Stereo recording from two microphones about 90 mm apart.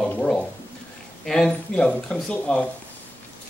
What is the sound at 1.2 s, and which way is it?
Speech, 5° left (ahead or behind).